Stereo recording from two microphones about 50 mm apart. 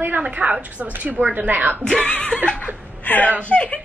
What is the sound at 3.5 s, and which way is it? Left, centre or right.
Speech, left.